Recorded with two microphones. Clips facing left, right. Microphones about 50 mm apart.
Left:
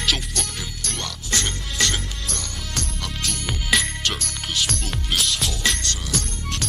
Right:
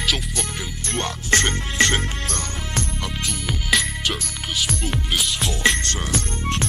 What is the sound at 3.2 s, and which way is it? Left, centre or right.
Music, centre.